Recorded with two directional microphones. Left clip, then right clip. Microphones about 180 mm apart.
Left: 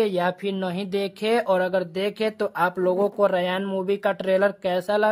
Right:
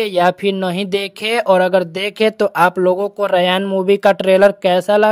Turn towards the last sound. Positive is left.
turn(degrees=-30)  # may be behind; listen again after turning